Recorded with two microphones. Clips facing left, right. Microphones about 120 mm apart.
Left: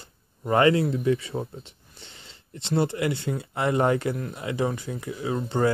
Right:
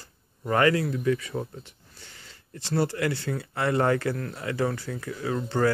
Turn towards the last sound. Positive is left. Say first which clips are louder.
# left 1 dB
turn(degrees=20)  # may be behind; listen again after turning